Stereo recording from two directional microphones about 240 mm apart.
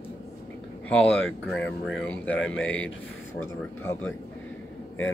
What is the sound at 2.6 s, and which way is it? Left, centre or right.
Speech, left.